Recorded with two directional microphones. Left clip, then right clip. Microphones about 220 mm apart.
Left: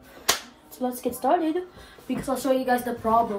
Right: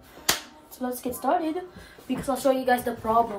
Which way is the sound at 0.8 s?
15° right (ahead or behind).